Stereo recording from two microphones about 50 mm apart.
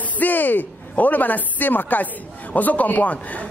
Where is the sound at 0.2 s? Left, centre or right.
Left.